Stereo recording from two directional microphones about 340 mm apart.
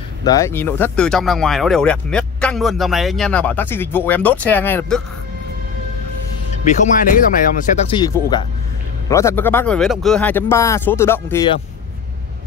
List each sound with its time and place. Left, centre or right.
0.2 s speech: centre
6.6 s speech: left
8.0 s speech: centre